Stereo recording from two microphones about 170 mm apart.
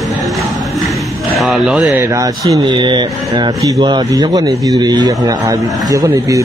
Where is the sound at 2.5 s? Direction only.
25° right (ahead or behind).